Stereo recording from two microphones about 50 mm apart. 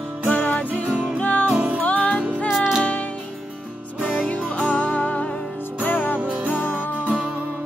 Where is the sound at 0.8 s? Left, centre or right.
Right.